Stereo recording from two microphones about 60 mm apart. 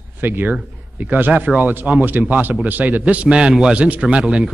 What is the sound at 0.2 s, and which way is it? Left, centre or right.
A man's voice, right.